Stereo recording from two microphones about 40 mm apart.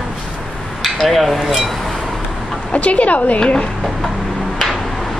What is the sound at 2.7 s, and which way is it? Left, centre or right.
Speech, left.